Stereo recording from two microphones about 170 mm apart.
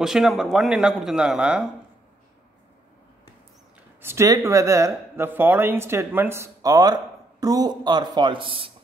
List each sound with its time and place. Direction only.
0.0 s speech: centre (ahead or behind)
4.0 s speech: 15° right (ahead or behind); by 8.7 s 30° right (ahead or behind)